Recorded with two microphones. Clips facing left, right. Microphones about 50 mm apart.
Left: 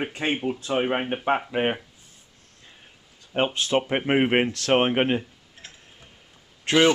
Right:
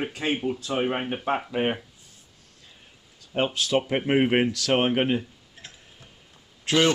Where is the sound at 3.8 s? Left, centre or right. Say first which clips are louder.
Even; left.